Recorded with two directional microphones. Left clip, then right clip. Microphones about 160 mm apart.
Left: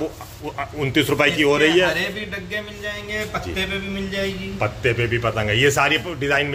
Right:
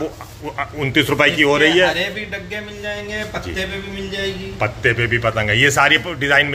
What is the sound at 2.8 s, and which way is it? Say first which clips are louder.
Speech: right 2 dB; 35° right (ahead or behind).